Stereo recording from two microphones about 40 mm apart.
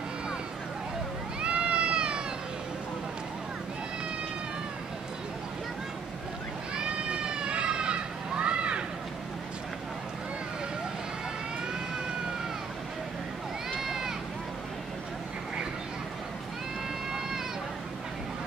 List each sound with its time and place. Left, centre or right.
1.4 s cat: right
6.7 s a sound: right
13.7 s run: centre